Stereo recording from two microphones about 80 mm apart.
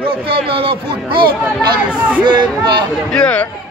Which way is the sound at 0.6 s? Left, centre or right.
Right.